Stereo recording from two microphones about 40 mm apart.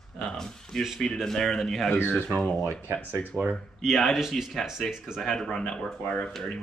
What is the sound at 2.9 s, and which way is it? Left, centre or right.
Speech, left.